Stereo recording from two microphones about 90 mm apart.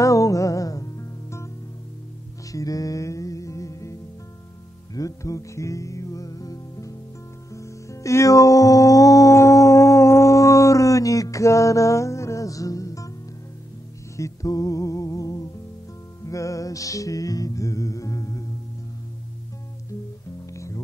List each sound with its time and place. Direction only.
0.0 s music: 35° left (ahead or behind)
2.5 s music: 40° left (ahead or behind)
14.1 s music: 35° left (ahead or behind)
20.4 s music: 35° left (ahead or behind)